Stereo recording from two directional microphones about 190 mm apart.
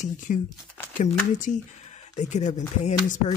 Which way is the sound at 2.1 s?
40° left (ahead or behind).